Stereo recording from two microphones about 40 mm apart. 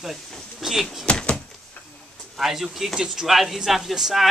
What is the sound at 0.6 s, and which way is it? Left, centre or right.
Speech, centre.